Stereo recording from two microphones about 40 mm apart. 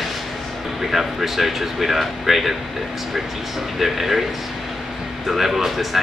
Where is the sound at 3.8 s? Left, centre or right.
Centre.